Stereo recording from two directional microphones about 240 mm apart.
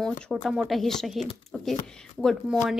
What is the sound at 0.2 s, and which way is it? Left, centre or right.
Speech, centre.